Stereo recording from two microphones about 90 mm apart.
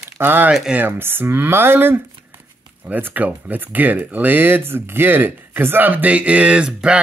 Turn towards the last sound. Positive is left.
turn(degrees=-10)  # may be behind; listen again after turning